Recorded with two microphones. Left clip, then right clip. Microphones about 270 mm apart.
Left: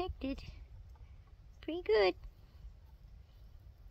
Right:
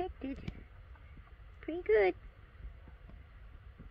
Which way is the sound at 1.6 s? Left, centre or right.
Left.